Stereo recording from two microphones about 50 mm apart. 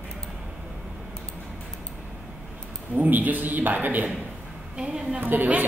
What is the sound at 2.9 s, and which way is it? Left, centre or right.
Speech, right.